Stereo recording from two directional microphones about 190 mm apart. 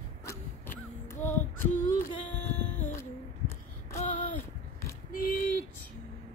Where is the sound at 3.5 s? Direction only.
15° left (ahead or behind).